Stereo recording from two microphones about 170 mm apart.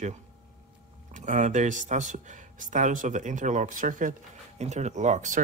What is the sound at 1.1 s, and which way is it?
Speech, 45° right (ahead or behind).